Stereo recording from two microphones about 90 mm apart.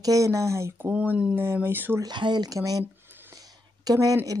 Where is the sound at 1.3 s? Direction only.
25° right (ahead or behind).